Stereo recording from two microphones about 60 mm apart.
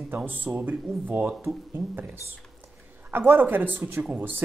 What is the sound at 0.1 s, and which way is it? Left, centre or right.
Speech, right.